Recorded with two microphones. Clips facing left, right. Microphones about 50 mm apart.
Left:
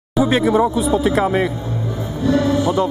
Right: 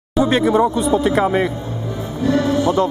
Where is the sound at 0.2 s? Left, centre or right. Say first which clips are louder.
Even; centre.